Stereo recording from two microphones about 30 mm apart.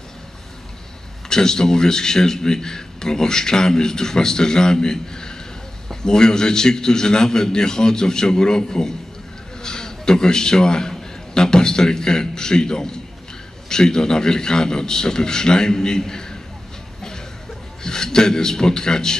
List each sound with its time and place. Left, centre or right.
1.3 s a man's voice: left
17.8 s speech: left